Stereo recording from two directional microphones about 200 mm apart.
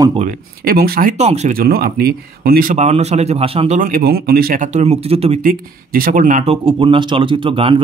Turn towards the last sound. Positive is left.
turn(degrees=-25)  # may be behind; listen again after turning